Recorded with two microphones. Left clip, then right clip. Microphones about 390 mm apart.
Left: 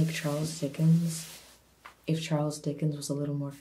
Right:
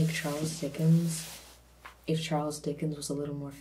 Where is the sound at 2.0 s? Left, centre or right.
Left.